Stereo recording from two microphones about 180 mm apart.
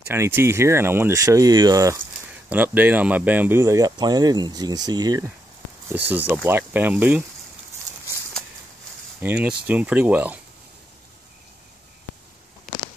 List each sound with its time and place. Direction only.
0.1 s speech: 15° right (ahead or behind)
5.9 s speech: 10° right (ahead or behind)
9.2 s speech: 10° right (ahead or behind)